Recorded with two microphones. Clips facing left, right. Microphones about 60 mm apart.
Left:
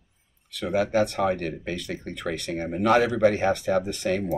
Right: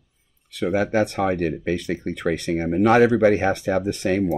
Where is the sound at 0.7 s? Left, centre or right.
Right.